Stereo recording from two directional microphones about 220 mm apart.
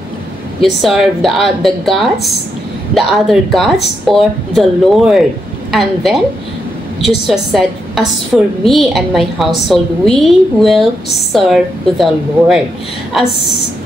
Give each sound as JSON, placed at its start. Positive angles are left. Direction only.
{"t": 0.7, "sound": "a woman's voice", "side_deg": 0}
{"t": 7.2, "sound": "a woman's voice", "side_deg": 0}